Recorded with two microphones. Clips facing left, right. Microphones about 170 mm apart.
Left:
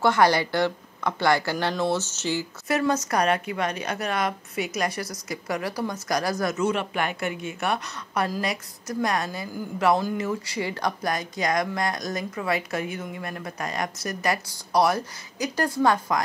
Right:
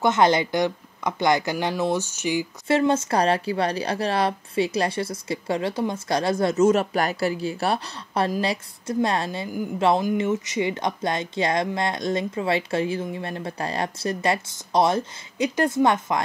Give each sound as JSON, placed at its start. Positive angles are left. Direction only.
{"t": 0.0, "sound": "speech", "side_deg": -20}
{"t": 2.7, "sound": "speech", "side_deg": -25}
{"t": 6.5, "sound": "speech", "side_deg": -40}